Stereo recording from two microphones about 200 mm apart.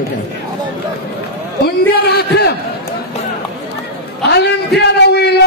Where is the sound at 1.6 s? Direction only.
55° left (ahead or behind).